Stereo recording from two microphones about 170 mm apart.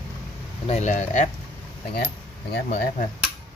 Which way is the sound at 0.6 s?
40° left (ahead or behind).